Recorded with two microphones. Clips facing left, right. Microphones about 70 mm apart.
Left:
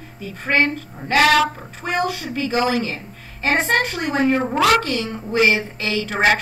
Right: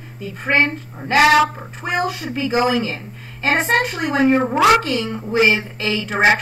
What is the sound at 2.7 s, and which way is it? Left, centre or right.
Speech, right.